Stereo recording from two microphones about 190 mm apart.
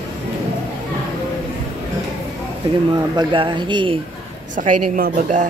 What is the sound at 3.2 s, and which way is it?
Speech, 25° right (ahead or behind).